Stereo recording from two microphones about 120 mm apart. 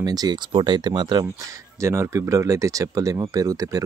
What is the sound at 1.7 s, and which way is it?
Speech, 25° right (ahead or behind).